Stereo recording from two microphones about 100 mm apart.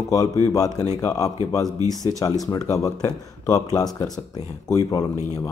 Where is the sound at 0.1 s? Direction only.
35° left (ahead or behind).